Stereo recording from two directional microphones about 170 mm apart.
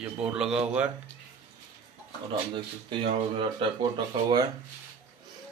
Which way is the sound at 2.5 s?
30° right (ahead or behind).